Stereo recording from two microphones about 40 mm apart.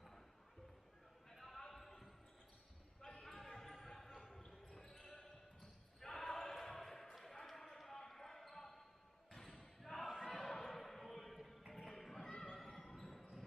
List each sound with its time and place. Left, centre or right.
1.3 s basketball bounce: centre
3.1 s basketball bounce: left
3.3 s basketball bounce: centre
10.5 s a sound: centre
11.7 s music: centre
12.3 s a sound: centre